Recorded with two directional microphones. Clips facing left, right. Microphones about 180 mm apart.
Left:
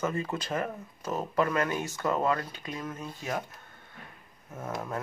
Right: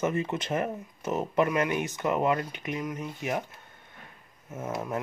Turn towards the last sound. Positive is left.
turn(degrees=-20)  # may be behind; listen again after turning